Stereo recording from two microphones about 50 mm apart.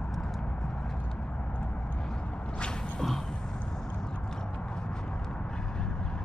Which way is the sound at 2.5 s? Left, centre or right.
Centre.